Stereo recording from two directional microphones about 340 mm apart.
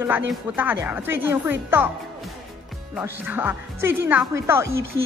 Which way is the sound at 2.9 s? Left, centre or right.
Centre.